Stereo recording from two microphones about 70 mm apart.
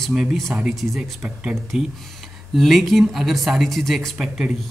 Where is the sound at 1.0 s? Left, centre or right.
Centre.